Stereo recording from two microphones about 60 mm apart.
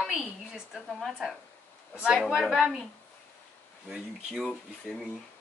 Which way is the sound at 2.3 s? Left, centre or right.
Centre.